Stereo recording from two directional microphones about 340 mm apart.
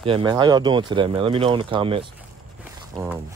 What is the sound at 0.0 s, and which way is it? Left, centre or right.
Speech, centre.